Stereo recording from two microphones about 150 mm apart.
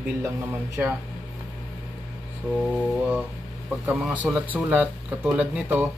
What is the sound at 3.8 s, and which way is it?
Speech, 10° right (ahead or behind).